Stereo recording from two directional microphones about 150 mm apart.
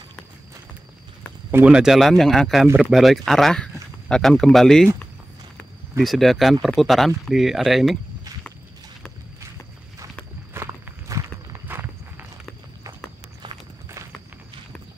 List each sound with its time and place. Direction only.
1.5 s speech: 10° right (ahead or behind)
5.9 s speech: centre (ahead or behind)
10.5 s walk: 15° right (ahead or behind)